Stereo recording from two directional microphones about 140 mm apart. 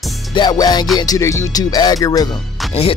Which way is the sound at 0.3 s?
30° left (ahead or behind).